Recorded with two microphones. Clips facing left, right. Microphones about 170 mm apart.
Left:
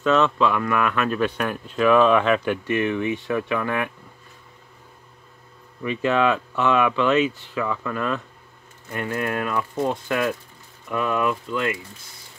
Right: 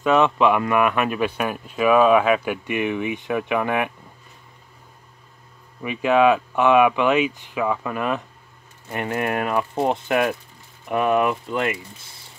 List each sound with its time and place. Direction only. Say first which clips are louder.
0.0 s speech: right 2 dB; 15° right (ahead or behind)
5.9 s speech: right 3 dB; 10° right (ahead or behind)